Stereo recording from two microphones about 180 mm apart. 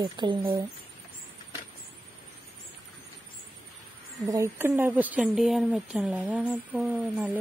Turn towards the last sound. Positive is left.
turn(degrees=-10)  # may be behind; listen again after turning